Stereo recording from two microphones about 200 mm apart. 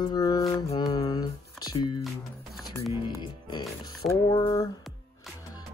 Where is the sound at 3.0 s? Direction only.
25° left (ahead or behind).